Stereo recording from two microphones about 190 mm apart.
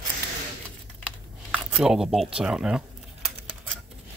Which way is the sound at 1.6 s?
Centre (ahead or behind).